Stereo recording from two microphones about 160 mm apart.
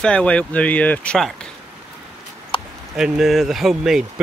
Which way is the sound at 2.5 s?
30° left (ahead or behind).